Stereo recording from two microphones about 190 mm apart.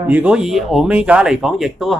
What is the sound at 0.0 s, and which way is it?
Speech, 10° right (ahead or behind).